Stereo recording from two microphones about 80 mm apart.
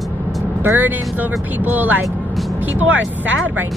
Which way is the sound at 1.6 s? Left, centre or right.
Right.